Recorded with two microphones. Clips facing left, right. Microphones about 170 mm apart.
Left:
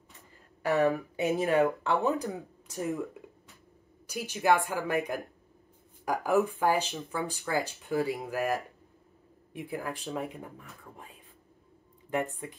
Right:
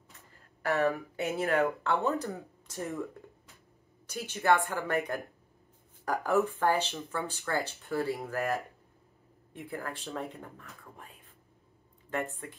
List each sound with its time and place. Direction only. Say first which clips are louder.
0.6 s speech: left 3 dB; 20° left (ahead or behind)
4.1 s speech: left 1 dB; 10° left (ahead or behind)
12.4 s speech: left 3 dB; 15° left (ahead or behind)